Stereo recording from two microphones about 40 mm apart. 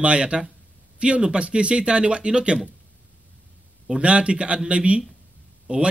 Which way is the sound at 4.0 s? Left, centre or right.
Right.